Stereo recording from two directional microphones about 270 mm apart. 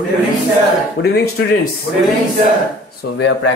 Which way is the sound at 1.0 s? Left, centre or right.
Left.